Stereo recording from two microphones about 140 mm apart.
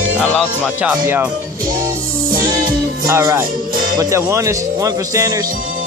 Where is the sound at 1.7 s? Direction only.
85° right.